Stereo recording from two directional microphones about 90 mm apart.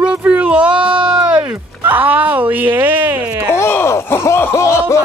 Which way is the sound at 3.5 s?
25° left (ahead or behind).